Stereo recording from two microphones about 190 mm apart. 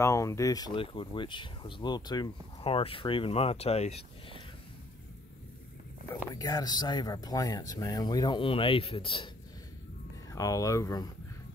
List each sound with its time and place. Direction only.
0.0 s speech: 15° left (ahead or behind); by 4.4 s 35° left (ahead or behind)
6.3 s speech: 20° left (ahead or behind)
10.3 s speech: 15° left (ahead or behind)